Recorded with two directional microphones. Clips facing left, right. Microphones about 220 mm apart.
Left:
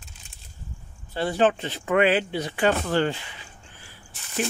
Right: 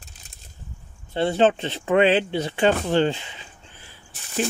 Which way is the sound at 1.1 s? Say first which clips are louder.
Right 3 dB; 25° right (ahead or behind).